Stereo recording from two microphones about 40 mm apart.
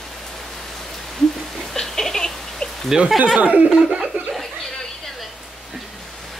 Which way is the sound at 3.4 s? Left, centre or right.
Right.